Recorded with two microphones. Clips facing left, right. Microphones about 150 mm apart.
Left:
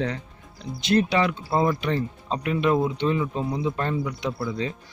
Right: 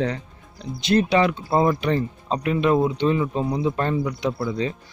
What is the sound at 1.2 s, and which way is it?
Speech, 20° right (ahead or behind).